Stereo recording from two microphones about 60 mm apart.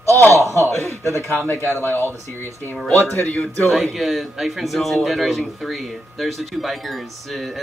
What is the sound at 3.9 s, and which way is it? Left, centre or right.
Speech, centre.